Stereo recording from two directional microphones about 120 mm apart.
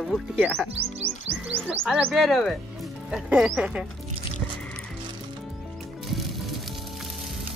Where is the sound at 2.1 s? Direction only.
Centre (ahead or behind).